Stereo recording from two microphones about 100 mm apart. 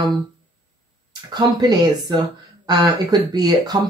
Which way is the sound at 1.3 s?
45° right (ahead or behind).